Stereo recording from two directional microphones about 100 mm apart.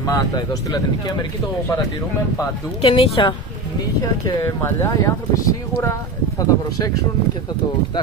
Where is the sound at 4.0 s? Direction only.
35° left (ahead or behind).